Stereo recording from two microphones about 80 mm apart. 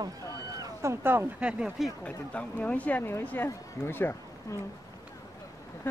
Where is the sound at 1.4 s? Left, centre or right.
Centre.